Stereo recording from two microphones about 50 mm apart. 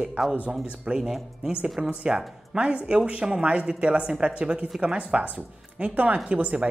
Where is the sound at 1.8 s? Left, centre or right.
Right.